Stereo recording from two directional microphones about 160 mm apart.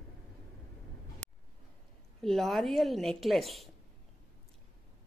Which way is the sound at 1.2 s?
5° left (ahead or behind).